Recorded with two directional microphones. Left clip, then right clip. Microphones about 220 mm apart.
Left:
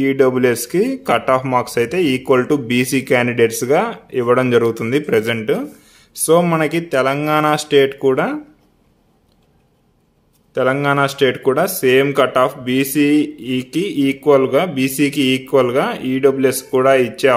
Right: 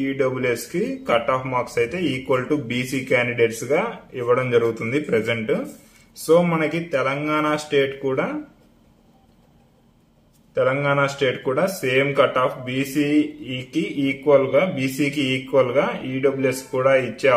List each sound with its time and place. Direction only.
0.0 s speech: 50° left (ahead or behind)
10.5 s speech: 50° left (ahead or behind)